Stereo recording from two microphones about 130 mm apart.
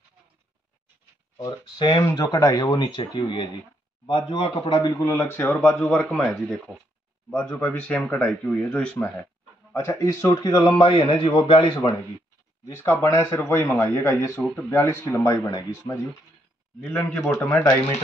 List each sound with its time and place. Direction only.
1.4 s speech: 35° left (ahead or behind)
4.9 s speech: 20° left (ahead or behind); by 6.3 s centre (ahead or behind)
7.3 s speech: 15° left (ahead or behind)
9.8 s speech: 25° left (ahead or behind)
10.8 s speech: 40° left (ahead or behind)
12.6 s speech: 20° left (ahead or behind)
16.8 s speech: 15° left (ahead or behind)